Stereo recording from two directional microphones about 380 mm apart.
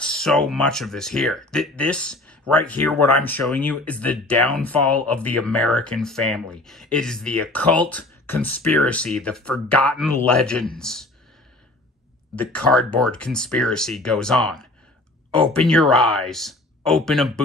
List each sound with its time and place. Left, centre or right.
0.0 s speech: centre
12.4 s speech: centre